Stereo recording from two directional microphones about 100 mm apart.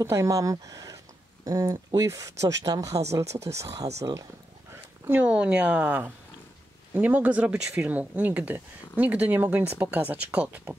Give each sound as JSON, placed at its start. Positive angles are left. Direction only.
{"t": 0.0, "sound": "speech", "side_deg": -30}
{"t": 5.0, "sound": "speech", "side_deg": -15}